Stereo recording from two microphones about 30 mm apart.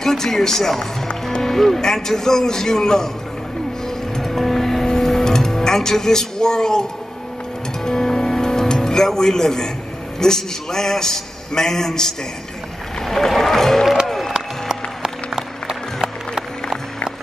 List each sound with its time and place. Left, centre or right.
0.0 s a man's voice: centre
3.8 s music: centre
10.1 s a man's voice: centre
13.0 s a sound: centre
13.4 s music: centre
14.3 s music: centre